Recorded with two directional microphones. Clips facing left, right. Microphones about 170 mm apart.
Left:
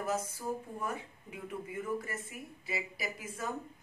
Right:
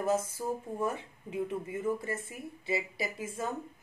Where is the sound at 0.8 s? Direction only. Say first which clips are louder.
Right 4 dB; 25° right (ahead or behind).